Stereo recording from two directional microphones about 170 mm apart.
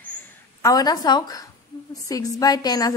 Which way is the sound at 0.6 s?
20° left (ahead or behind).